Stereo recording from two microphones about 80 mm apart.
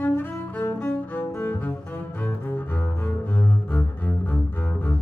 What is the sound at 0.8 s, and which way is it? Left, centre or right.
Music, left.